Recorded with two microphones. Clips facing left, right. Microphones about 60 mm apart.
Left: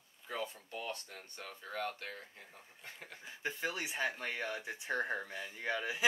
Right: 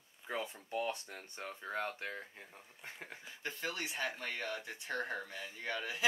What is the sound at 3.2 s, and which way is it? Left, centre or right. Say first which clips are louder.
Speech: left 3 dB; centre.